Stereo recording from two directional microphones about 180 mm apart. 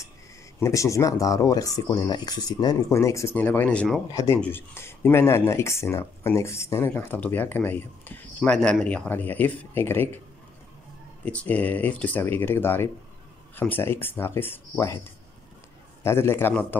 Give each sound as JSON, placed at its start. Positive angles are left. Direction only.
{"t": 0.6, "sound": "speech", "side_deg": 15}
{"t": 4.1, "sound": "speech", "side_deg": 15}
{"t": 11.2, "sound": "speech", "side_deg": 5}
{"t": 16.0, "sound": "speech", "side_deg": 15}